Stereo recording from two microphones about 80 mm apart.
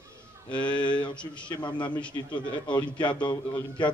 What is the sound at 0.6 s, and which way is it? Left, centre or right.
A man's voice, left.